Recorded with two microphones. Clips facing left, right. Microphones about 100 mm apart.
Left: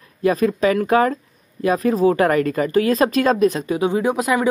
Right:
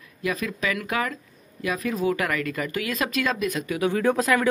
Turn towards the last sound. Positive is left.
turn(degrees=15)  # may be behind; listen again after turning